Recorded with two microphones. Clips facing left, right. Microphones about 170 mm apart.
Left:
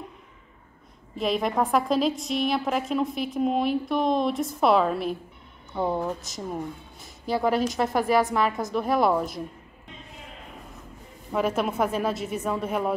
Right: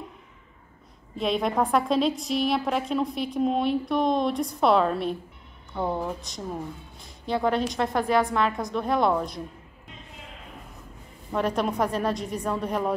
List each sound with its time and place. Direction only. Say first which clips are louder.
1.1 s a woman's voice: even; centre (ahead or behind)
11.3 s a woman's voice: even; 5° left (ahead or behind)